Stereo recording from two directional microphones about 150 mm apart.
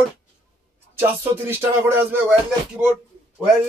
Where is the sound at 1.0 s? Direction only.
15° right (ahead or behind).